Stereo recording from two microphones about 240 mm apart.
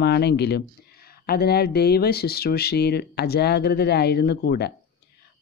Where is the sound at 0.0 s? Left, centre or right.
Left.